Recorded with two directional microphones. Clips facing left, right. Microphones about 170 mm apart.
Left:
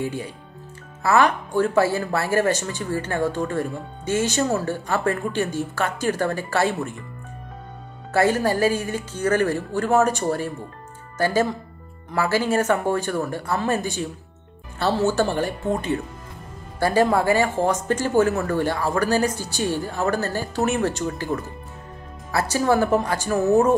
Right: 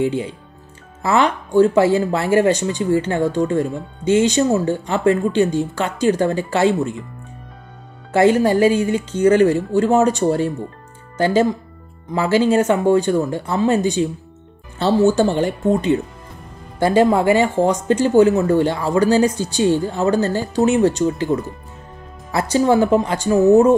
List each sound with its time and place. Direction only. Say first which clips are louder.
0.0 s speech: right 8 dB; 20° right (ahead or behind)
8.1 s speech: right 6 dB; 20° right (ahead or behind)